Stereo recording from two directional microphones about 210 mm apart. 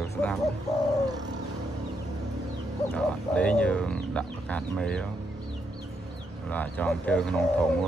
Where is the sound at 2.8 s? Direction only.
5° left (ahead or behind).